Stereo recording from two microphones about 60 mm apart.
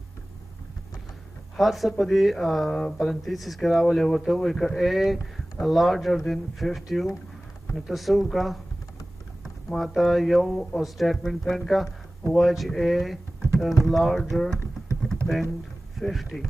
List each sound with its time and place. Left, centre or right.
1.6 s speech: centre
9.7 s speech: centre
16.0 s speech: centre